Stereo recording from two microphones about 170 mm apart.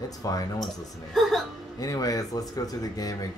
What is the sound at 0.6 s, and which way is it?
Speech, centre (ahead or behind).